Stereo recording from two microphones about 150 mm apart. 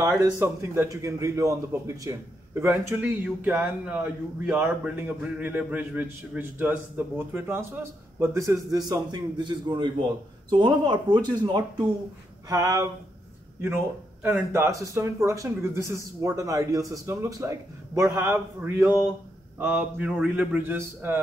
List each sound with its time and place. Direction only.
0.2 s speech: 20° right (ahead or behind)
14.2 s speech: 15° right (ahead or behind)